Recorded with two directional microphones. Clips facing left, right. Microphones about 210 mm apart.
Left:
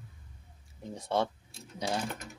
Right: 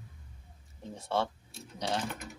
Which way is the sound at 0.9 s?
15° left (ahead or behind).